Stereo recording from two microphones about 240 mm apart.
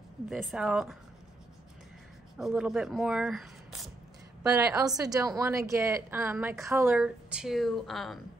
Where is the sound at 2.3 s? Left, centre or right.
Centre.